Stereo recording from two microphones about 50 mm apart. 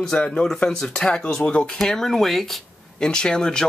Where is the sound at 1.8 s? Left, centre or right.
Centre.